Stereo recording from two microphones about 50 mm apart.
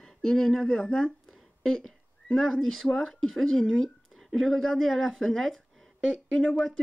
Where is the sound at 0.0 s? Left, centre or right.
Centre.